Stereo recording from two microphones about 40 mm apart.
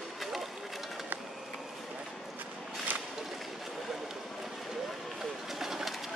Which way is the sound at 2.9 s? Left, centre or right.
Right.